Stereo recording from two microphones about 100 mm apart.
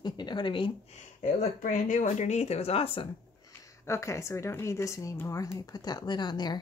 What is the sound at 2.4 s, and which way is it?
Speech, 90° left.